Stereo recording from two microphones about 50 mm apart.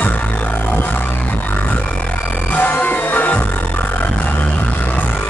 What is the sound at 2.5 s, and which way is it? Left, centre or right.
Music, left.